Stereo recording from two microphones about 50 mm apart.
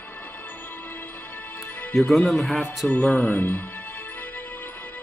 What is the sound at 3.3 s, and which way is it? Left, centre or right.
Speech, left.